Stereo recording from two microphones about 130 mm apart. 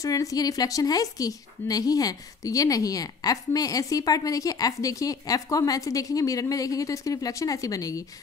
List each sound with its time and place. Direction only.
0.0 s a woman's voice: 25° left (ahead or behind)